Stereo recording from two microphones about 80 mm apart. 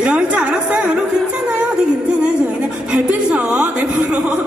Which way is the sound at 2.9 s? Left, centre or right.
Centre.